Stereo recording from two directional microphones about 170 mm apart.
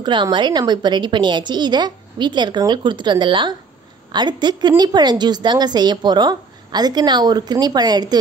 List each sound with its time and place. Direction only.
0.0 s a woman's voice: 25° right (ahead or behind)